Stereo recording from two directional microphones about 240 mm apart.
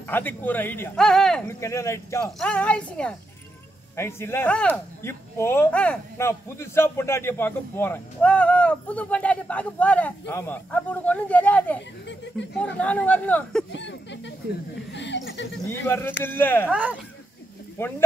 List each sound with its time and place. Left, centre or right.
0.1 s speech: centre
13.7 s speech: left
15.9 s speech: centre
16.7 s speech: centre
17.8 s speech: centre